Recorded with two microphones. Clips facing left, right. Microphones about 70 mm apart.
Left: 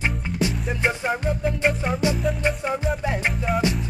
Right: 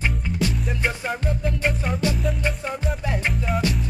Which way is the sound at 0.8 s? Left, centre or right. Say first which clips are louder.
Left 4 dB; left.